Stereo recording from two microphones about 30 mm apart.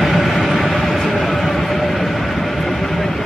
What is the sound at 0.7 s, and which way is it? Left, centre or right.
Train, centre.